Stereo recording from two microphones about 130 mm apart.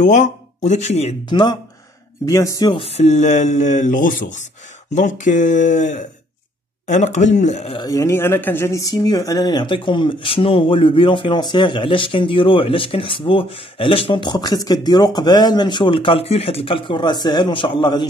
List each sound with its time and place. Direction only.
0.0 s speech: 70° left (ahead or behind)
1.3 s speech: 30° left (ahead or behind)
2.7 s speech: 50° left (ahead or behind)
7.7 s speech: 30° left (ahead or behind)